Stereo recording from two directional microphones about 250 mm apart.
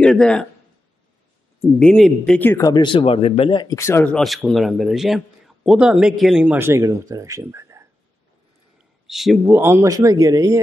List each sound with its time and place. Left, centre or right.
0.0 s speech: centre
1.8 s speech: centre
9.0 s speech: centre